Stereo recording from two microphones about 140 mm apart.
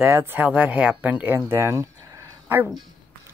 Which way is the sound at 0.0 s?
20° right (ahead or behind).